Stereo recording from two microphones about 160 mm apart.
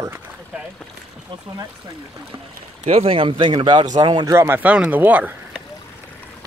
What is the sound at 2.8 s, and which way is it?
Speech, 40° right (ahead or behind).